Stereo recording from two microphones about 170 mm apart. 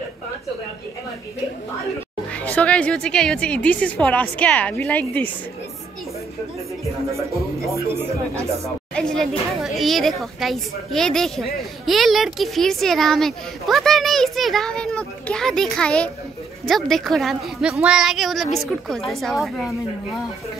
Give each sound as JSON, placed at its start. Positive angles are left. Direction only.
{"t": 2.3, "sound": "a woman's voice", "side_deg": 10}
{"t": 7.1, "sound": "speech", "side_deg": -15}
{"t": 8.9, "sound": "speech", "side_deg": 5}